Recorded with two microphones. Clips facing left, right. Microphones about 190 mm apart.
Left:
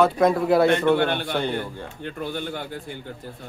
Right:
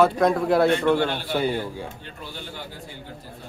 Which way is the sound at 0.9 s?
55° left (ahead or behind).